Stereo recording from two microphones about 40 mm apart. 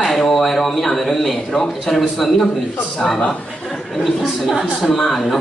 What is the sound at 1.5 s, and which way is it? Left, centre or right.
Speech, centre.